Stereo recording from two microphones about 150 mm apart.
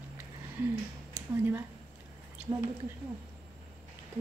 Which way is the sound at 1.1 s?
15° right (ahead or behind).